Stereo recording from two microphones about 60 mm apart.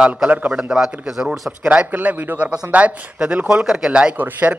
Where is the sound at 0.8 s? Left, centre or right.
Centre.